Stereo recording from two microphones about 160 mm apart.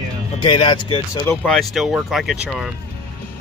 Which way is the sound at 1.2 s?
15° left (ahead or behind).